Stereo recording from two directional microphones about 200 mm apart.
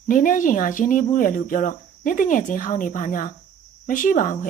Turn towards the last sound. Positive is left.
turn(degrees=40)  # may be behind; listen again after turning